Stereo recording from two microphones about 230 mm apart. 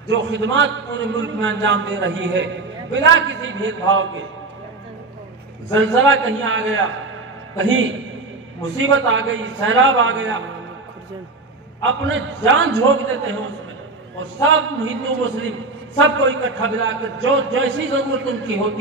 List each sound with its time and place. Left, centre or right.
0.1 s a man's voice: right
5.7 s a man's voice: right
11.8 s a man's voice: right
14.4 s a man's voice: right